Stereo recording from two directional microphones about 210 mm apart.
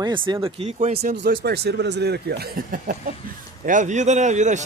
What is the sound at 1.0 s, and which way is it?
Speech, 45° right (ahead or behind).